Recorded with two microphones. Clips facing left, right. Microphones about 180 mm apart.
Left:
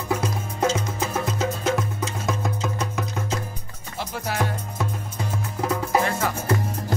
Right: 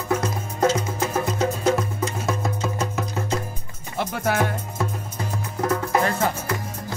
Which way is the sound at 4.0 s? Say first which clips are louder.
Right 4 dB; 55° right (ahead or behind).